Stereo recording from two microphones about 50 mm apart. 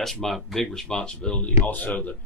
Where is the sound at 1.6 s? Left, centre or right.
Left.